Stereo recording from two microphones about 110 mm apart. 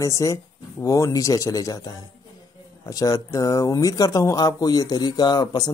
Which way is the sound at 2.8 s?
30° left (ahead or behind).